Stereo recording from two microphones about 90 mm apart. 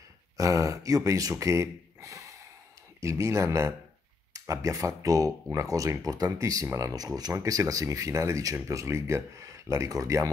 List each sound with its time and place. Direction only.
0.4 s speech: 35° right (ahead or behind)